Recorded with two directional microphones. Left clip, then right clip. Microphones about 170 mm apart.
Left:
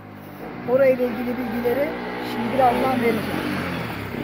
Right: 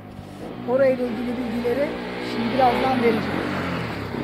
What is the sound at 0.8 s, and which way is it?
Speech, 25° left (ahead or behind).